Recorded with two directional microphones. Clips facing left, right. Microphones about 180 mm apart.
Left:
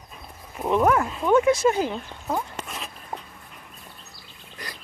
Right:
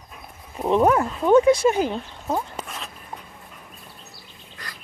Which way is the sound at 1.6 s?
15° right (ahead or behind).